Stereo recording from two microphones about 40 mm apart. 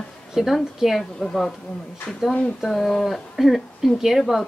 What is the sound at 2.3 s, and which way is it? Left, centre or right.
Speech, left.